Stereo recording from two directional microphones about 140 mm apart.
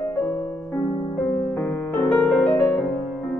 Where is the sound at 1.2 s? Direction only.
5° left (ahead or behind).